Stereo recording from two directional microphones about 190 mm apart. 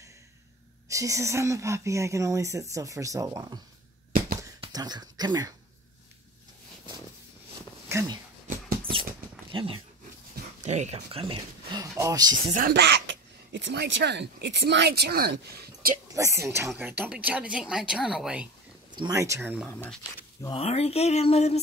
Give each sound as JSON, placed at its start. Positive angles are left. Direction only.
{"t": 0.8, "sound": "speech", "side_deg": -15}
{"t": 4.6, "sound": "speech", "side_deg": -20}
{"t": 7.9, "sound": "a sound", "side_deg": -15}
{"t": 8.5, "sound": "a sound", "side_deg": -50}
{"t": 9.5, "sound": "speech", "side_deg": -30}
{"t": 12.5, "sound": "speech", "side_deg": -55}
{"t": 16.2, "sound": "speech", "side_deg": -15}
{"t": 18.9, "sound": "speech", "side_deg": -20}
{"t": 19.7, "sound": "speech", "side_deg": 10}
{"t": 20.5, "sound": "speech", "side_deg": 30}